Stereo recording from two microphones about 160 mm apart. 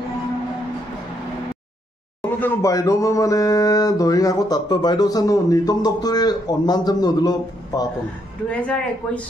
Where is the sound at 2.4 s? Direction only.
15° left (ahead or behind).